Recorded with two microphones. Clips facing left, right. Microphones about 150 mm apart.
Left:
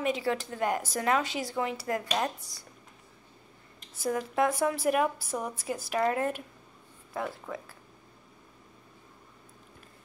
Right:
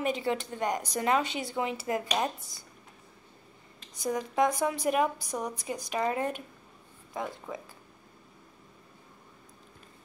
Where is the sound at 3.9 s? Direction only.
5° left (ahead or behind).